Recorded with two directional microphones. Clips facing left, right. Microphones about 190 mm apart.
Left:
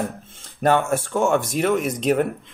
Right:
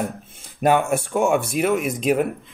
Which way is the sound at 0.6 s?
15° right (ahead or behind).